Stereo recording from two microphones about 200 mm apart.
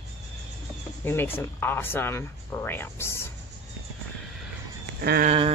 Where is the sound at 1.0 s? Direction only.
10° left (ahead or behind).